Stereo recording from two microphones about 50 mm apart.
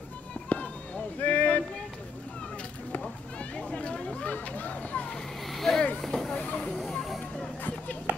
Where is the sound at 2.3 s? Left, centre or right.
Centre.